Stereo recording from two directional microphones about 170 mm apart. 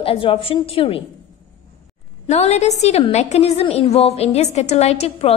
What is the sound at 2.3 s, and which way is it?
A woman's voice, 40° left (ahead or behind).